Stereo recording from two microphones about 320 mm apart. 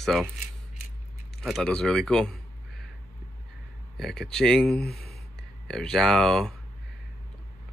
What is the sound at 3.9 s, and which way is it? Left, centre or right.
Speech, centre.